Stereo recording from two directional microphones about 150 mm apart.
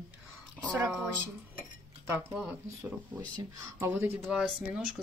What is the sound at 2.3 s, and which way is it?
Speech, 5° right (ahead or behind).